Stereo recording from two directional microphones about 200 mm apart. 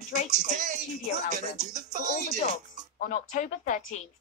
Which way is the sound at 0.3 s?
35° right (ahead or behind).